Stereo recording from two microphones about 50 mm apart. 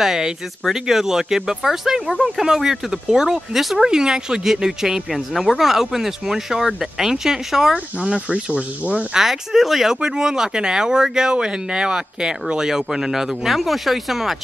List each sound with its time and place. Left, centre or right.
0.0 s speech: centre
7.7 s speech: centre
9.2 s speech: centre